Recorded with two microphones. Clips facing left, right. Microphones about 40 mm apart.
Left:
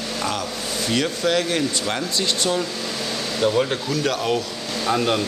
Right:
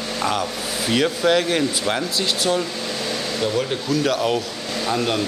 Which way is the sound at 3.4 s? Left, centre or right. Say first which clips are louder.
Left 4 dB; centre.